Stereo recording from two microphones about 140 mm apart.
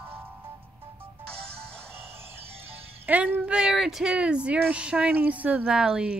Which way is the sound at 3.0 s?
10° right (ahead or behind).